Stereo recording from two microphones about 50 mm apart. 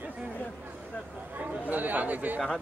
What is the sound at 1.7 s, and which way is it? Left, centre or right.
Speech, right.